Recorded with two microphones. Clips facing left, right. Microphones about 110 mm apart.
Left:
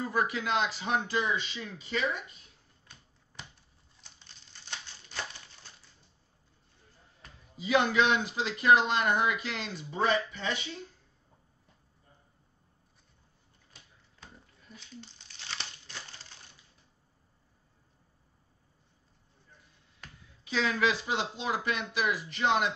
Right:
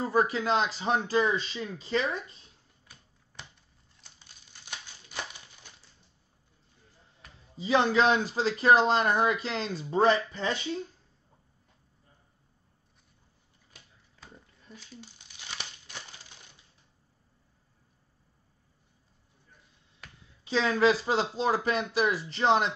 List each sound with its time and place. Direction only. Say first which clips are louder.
0.0 s speech: right 4 dB; 30° right (ahead or behind)
4.3 s crumpling: even; 10° right (ahead or behind)
7.5 s speech: right 2 dB; 30° right (ahead or behind)
14.8 s crumpling: left 2 dB; 10° right (ahead or behind)
20.0 s a sound: even; centre (ahead or behind)
20.4 s speech: right 5 dB; 30° right (ahead or behind)